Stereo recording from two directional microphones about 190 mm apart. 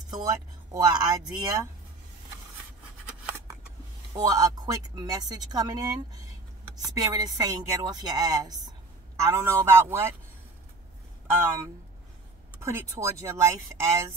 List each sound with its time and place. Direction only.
0.7 s speech: 20° right (ahead or behind)
3.1 s scissors: 15° right (ahead or behind)
4.1 s speech: 20° right (ahead or behind)
7.0 s speech: 20° right (ahead or behind)
12.6 s speech: 15° right (ahead or behind)